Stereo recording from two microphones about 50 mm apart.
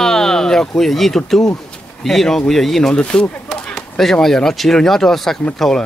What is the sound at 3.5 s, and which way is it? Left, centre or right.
Speech, centre.